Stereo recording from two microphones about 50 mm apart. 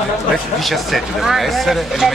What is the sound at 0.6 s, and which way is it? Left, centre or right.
Speech, centre.